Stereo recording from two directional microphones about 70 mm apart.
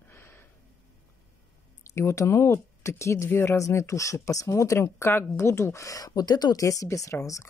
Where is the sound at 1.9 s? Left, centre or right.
Left.